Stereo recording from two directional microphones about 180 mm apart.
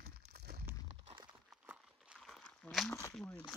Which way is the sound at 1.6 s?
5° right (ahead or behind).